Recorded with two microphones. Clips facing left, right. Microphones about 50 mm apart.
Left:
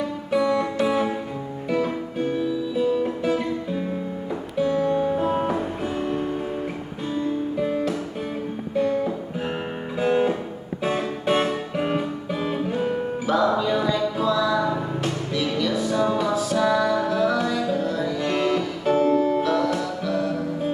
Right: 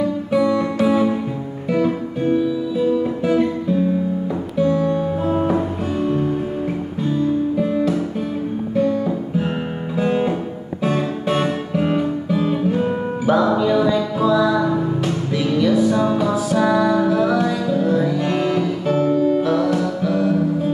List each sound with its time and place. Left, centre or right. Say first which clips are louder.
0.3 s music: right 2 dB; centre
3.2 s guitar: right 6 dB; centre
4.6 s music: right 2 dB; centre
10.8 s music: right 4 dB; centre
12.7 s music: right 4 dB; centre
18.9 s music: even; centre
19.4 s music: right 4 dB; centre